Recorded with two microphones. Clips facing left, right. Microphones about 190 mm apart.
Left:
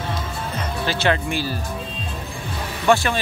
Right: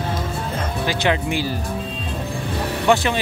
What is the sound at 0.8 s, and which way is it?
Speech, 15° right (ahead or behind).